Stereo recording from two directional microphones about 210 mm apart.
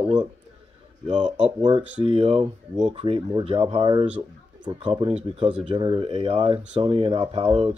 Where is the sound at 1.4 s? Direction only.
20° right (ahead or behind).